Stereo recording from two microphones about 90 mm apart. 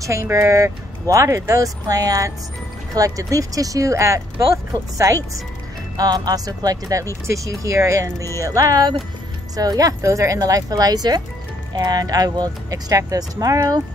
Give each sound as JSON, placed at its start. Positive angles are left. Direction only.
{"t": 0.0, "sound": "speech", "side_deg": -35}